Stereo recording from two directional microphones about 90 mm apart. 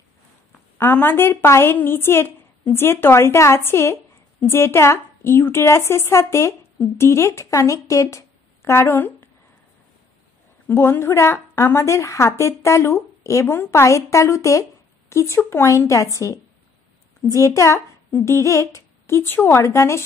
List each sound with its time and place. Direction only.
0.7 s a woman's voice: 25° left (ahead or behind)
10.7 s a woman's voice: 25° left (ahead or behind)